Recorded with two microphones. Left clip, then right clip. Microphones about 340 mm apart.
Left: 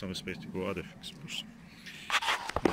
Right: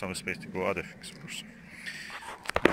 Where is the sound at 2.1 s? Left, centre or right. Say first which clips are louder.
Left 12 dB; left.